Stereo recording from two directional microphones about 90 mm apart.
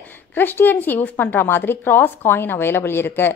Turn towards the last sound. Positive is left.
turn(degrees=25)  # may be behind; listen again after turning